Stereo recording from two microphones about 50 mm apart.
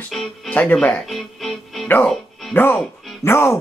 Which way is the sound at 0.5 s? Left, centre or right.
Left.